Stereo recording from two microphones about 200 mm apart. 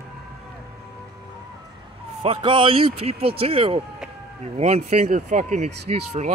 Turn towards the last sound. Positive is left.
turn(degrees=-35)  # may be behind; listen again after turning